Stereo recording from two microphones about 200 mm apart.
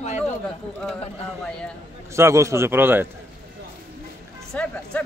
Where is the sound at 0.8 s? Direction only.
5° left (ahead or behind).